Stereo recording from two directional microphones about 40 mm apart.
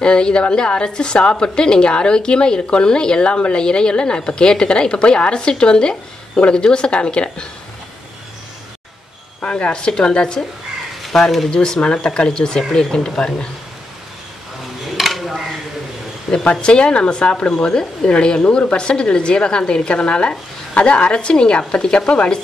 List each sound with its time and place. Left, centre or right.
0.0 s a woman's voice: left
9.4 s a woman's voice: left
11.1 s speech: centre
11.5 s a woman's voice: left
15.0 s a sound: centre
16.4 s a woman's voice: left